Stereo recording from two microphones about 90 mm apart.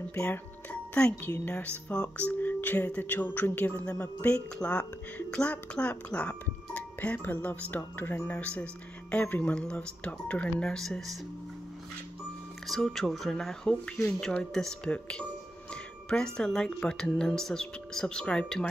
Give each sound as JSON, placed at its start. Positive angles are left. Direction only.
{"t": 0.2, "sound": "speech", "side_deg": 20}
{"t": 12.6, "sound": "speech", "side_deg": 0}
{"t": 15.7, "sound": "a sound", "side_deg": 10}
{"t": 16.3, "sound": "speech", "side_deg": 5}